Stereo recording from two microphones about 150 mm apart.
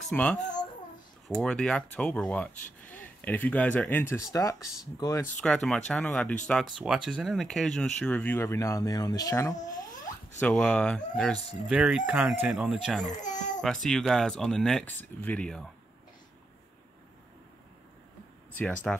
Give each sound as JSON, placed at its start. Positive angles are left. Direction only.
{"t": 0.1, "sound": "speech", "side_deg": 10}
{"t": 5.4, "sound": "speech", "side_deg": 5}
{"t": 10.4, "sound": "speech", "side_deg": 5}
{"t": 11.6, "sound": "speech", "side_deg": -5}
{"t": 13.1, "sound": "a child's voice", "side_deg": 55}
{"t": 13.6, "sound": "speech", "side_deg": 5}
{"t": 18.9, "sound": "speech", "side_deg": 5}